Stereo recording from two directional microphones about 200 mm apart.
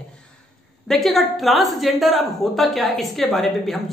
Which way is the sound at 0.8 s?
Centre (ahead or behind).